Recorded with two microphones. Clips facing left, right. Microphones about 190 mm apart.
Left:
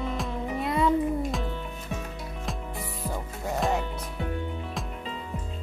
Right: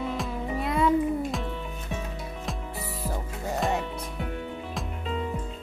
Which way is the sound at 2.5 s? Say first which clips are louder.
Left 1 dB; centre (ahead or behind).